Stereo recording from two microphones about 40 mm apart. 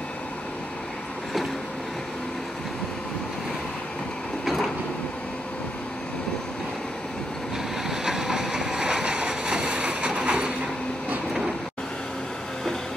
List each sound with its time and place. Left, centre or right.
7.9 s vehicle: centre; by 10.5 s right